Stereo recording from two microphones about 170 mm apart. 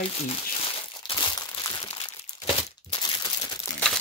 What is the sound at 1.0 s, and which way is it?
Crumpling, 25° left (ahead or behind).